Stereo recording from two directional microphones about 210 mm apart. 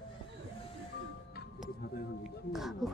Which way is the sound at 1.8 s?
50° left (ahead or behind).